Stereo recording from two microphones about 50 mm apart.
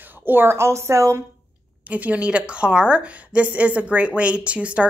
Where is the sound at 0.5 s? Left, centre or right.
Right.